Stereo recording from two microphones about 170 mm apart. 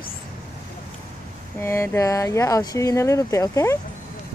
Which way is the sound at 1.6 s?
15° left (ahead or behind).